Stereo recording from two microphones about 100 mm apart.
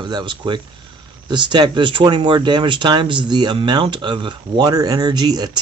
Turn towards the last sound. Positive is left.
turn(degrees=-45)  # may be behind; listen again after turning